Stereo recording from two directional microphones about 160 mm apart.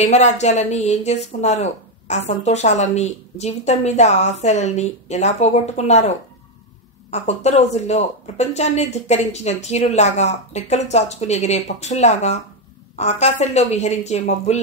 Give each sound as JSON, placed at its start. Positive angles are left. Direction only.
{"t": 0.0, "sound": "speech", "side_deg": 45}